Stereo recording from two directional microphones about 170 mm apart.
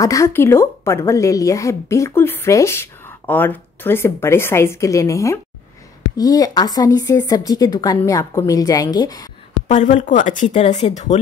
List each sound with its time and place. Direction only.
0.0 s a woman's voice: 20° left (ahead or behind)
9.7 s speech: 45° left (ahead or behind)